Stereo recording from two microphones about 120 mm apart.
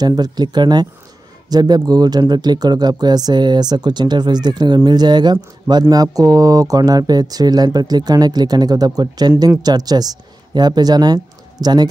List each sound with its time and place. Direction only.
0.0 s speech: 35° right (ahead or behind)